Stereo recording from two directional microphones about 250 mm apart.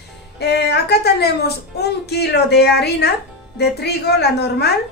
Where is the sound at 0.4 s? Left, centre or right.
Left.